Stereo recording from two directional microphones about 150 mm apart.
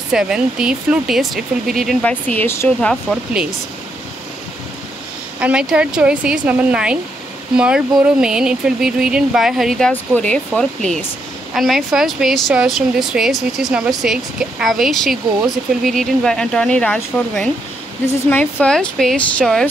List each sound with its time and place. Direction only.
0.1 s speech: 5° right (ahead or behind); by 2.7 s 15° left (ahead or behind)
2.8 s speech: centre (ahead or behind)
5.4 s speech: 5° right (ahead or behind)
10.8 s speech: 50° right (ahead or behind)
11.5 s speech: centre (ahead or behind)